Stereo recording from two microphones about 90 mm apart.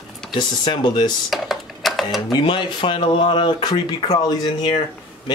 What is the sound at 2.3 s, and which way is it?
Speech, 65° left (ahead or behind).